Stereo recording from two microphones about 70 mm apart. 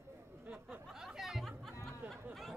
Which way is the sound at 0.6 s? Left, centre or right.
Centre.